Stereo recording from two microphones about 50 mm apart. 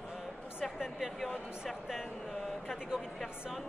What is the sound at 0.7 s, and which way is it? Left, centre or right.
Speech, centre.